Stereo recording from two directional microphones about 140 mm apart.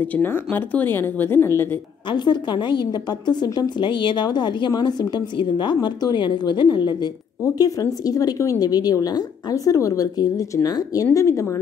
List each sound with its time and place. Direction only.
0.0 s speech: 15° left (ahead or behind)
2.0 s a woman's voice: 30° left (ahead or behind)